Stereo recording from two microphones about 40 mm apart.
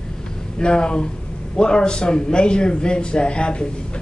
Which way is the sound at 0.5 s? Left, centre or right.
Left.